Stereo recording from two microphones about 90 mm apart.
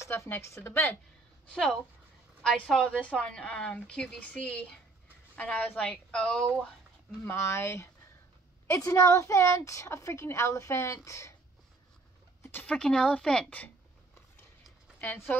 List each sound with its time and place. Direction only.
0.0 s a woman's voice: 30° left (ahead or behind)
1.5 s a woman's voice: 10° left (ahead or behind)
7.2 s a woman's voice: 30° left (ahead or behind)
12.6 s a woman's voice: 10° left (ahead or behind)
15.0 s speech: 20° left (ahead or behind)